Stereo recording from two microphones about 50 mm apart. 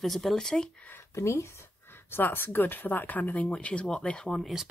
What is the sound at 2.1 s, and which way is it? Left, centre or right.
Speech, left.